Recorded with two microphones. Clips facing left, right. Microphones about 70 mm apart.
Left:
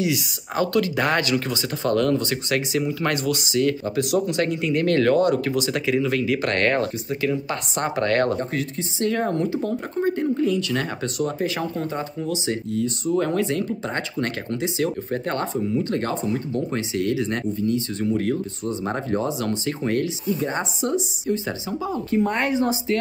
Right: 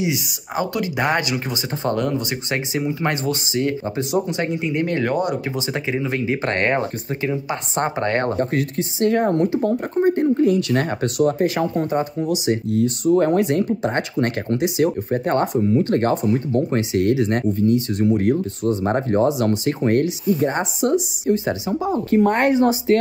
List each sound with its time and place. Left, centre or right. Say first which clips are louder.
0.0 s speech: even; right
11.3 s speech: right 6 dB; right
13.1 s speech: right 5 dB; right
15.9 s speech: right 6 dB; right
17.9 s speech: right 5 dB; right
18.9 s speech: right 6 dB; right
22.1 s speech: right 5 dB; right